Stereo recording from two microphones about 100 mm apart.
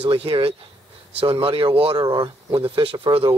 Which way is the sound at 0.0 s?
75° right (ahead or behind).